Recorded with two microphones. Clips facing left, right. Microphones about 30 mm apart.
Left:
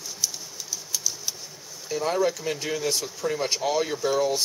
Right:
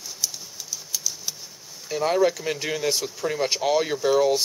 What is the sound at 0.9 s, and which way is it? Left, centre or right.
Typewriter, centre.